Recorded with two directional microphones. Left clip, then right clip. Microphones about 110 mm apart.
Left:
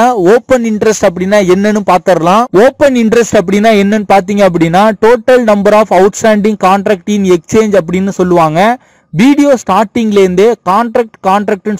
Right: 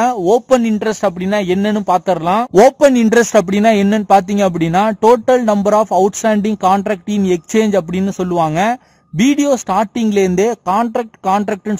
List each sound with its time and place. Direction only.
0.3 s speech: 40° left (ahead or behind)